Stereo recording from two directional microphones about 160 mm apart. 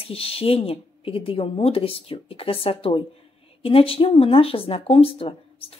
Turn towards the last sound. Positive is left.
turn(degrees=35)  # may be behind; listen again after turning